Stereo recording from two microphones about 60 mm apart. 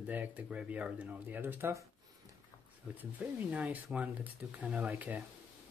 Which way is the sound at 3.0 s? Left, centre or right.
Right.